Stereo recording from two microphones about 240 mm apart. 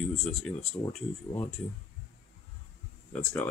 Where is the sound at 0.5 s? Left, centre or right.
Centre.